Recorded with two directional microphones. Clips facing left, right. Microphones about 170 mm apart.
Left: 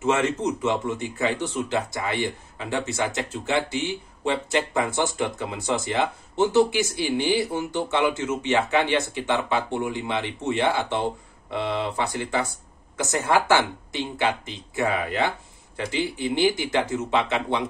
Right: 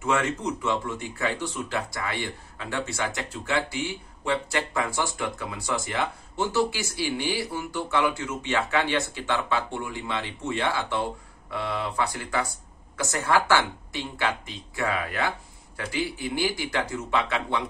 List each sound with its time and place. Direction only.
0.0 s speech: 20° left (ahead or behind)